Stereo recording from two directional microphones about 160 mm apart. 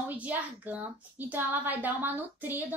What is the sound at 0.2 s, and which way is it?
A child's voice, 10° right (ahead or behind).